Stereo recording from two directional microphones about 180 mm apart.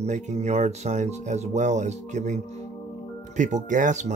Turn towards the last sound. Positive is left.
turn(degrees=-45)  # may be behind; listen again after turning